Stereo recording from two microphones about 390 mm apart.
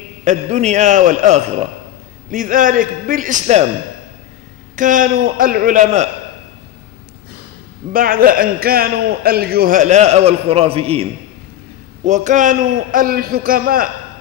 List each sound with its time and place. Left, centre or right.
0.2 s a man's voice: centre
4.7 s a man's voice: centre
7.9 s a man's voice: right